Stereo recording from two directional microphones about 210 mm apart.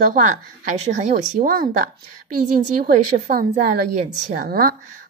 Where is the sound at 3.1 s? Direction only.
35° right (ahead or behind).